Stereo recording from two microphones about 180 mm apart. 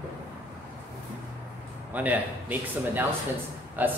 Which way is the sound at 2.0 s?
10° right (ahead or behind).